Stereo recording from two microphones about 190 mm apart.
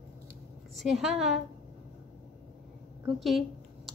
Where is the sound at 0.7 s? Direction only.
Centre (ahead or behind).